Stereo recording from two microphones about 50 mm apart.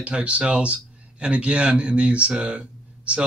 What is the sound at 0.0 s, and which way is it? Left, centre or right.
Speech, right.